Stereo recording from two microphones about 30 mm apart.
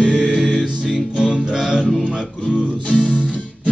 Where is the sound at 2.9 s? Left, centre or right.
Left.